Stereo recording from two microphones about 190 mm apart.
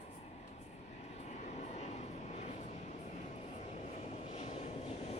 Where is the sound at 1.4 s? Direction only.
35° left (ahead or behind).